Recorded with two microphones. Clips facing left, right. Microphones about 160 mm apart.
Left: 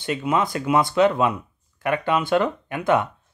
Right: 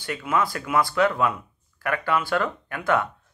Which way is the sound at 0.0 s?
20° left (ahead or behind).